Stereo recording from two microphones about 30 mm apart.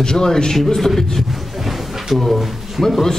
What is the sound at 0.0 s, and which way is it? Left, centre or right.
Speech, centre.